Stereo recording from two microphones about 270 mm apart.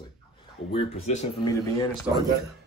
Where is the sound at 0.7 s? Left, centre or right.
Left.